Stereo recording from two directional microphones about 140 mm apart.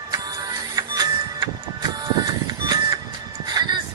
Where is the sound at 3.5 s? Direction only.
30° right (ahead or behind).